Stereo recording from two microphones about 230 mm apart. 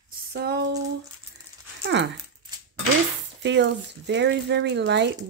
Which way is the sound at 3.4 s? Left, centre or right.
Right.